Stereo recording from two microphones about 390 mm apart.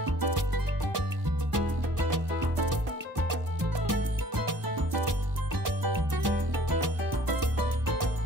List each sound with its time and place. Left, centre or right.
0.0 s music: right